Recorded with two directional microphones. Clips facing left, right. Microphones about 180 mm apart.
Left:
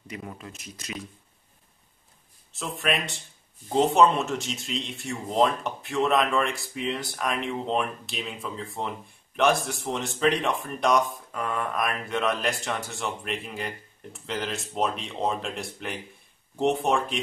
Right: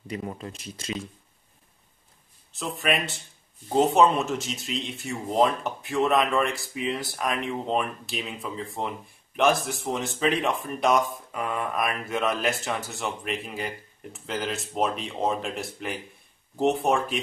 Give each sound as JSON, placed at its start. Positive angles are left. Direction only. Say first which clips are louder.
{"t": 0.1, "sound": "speech", "louder": "right 5 dB", "side_deg": -30}
{"t": 2.5, "sound": "speech", "louder": "right 1 dB", "side_deg": 0}